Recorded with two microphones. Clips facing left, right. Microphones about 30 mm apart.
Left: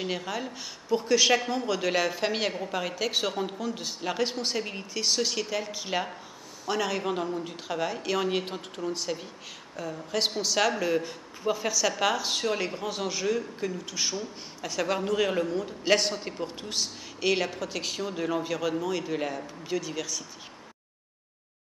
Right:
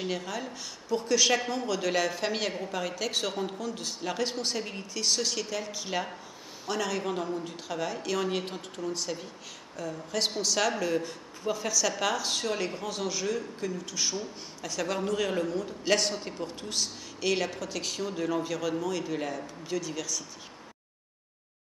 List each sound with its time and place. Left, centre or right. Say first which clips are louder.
0.0 s speech: left 2 dB; centre
1.4 s a man's voice: left 2 dB; centre
1.7 s speech: left 1 dB; centre